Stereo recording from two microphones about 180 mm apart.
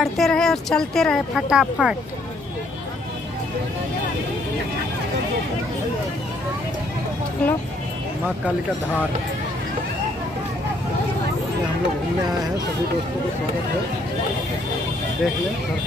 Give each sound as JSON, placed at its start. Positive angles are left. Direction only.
{"t": 0.0, "sound": "speech", "side_deg": 0}
{"t": 7.4, "sound": "speech", "side_deg": 5}